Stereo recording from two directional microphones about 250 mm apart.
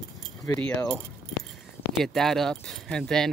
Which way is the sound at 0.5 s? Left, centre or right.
Centre.